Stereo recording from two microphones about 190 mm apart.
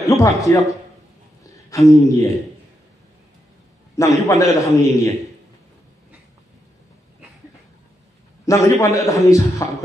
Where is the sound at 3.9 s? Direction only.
15° left (ahead or behind).